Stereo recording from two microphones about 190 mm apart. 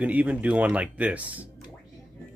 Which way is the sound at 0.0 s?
10° right (ahead or behind).